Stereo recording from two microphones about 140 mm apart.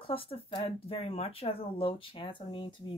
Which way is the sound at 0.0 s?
40° left (ahead or behind).